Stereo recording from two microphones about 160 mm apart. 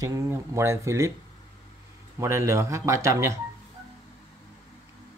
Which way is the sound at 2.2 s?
15° right (ahead or behind).